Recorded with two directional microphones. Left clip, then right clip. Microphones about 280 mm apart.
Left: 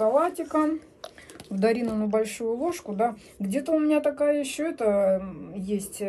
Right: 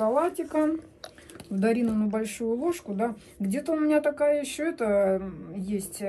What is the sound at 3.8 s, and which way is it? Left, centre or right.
Speech, left.